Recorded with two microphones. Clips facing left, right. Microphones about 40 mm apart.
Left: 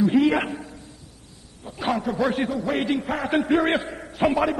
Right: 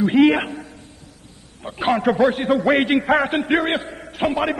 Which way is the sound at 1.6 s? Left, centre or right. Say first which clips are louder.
Right 6 dB; right.